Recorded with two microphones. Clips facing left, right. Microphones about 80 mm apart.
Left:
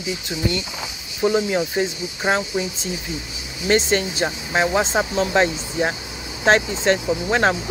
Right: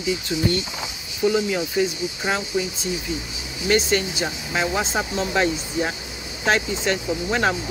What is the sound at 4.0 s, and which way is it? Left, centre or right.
Speech, left.